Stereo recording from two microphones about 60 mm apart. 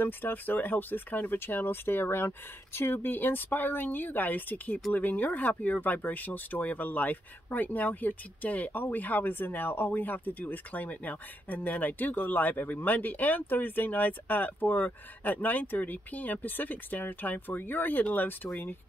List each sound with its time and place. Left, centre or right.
0.0 s speech: left